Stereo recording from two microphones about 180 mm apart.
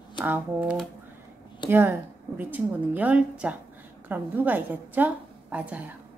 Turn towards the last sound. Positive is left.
turn(degrees=-10)  # may be behind; listen again after turning